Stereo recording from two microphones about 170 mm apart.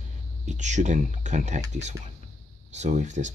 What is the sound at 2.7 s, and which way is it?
Speech, 45° right (ahead or behind).